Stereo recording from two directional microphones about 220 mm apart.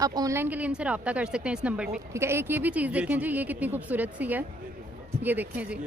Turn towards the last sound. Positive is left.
turn(degrees=-5)  # may be behind; listen again after turning